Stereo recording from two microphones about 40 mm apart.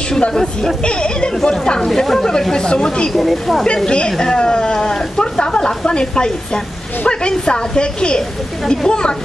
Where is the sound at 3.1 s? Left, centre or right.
Centre.